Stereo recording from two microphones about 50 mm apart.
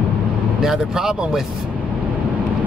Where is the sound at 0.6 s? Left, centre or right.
Centre.